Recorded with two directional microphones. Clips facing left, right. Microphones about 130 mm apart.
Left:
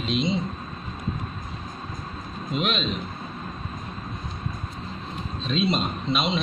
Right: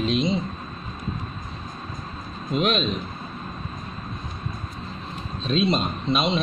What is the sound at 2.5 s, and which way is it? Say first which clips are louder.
Speech: right 4 dB; 45° right (ahead or behind).